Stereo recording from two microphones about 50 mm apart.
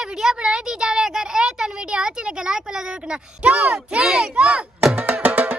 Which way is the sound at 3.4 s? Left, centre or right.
Right.